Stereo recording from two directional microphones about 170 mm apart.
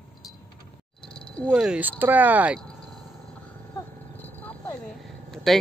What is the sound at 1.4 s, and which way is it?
Speech, 5° right (ahead or behind).